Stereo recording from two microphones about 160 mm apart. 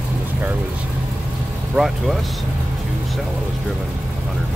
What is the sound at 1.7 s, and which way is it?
Speech, centre (ahead or behind).